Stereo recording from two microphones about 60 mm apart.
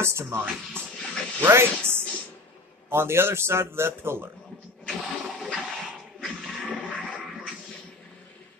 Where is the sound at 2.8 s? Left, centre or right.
Right.